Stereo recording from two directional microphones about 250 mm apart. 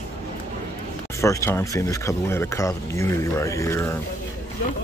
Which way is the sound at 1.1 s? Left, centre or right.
Centre.